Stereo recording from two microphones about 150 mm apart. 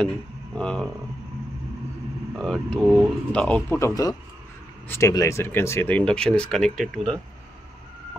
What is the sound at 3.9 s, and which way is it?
A man's voice, 25° left (ahead or behind).